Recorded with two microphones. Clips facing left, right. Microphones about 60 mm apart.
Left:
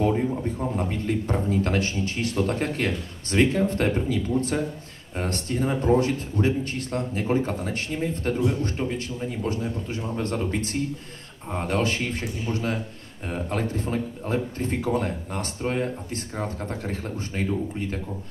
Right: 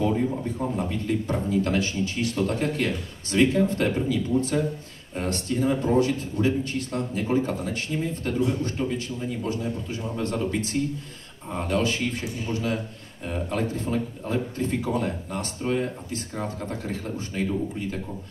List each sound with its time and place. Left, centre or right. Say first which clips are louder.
0.7 s a man's voice: even; left